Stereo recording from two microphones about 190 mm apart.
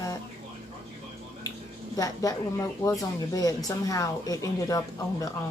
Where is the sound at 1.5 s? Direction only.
20° left (ahead or behind).